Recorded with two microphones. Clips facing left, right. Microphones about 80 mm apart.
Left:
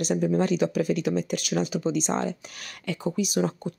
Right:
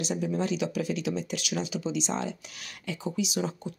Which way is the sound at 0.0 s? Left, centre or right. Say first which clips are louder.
Left 6 dB; left.